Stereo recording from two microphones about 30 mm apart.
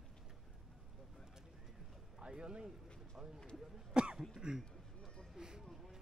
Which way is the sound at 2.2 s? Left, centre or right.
Right.